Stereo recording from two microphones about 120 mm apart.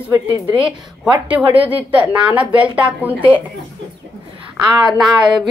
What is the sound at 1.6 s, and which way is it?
Speech, 10° right (ahead or behind).